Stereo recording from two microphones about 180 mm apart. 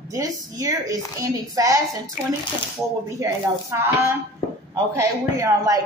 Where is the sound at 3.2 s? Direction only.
20° right (ahead or behind).